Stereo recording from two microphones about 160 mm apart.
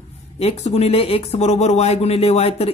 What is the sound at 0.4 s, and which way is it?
Speech, 40° left (ahead or behind).